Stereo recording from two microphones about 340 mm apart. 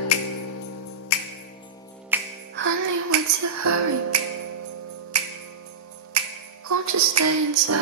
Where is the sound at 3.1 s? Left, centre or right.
Right.